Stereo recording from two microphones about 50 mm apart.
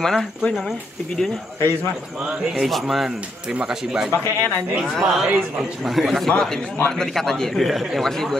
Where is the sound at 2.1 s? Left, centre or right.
Centre.